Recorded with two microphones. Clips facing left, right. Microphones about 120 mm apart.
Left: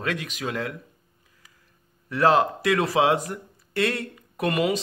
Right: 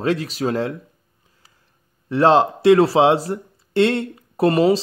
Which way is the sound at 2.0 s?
30° right (ahead or behind).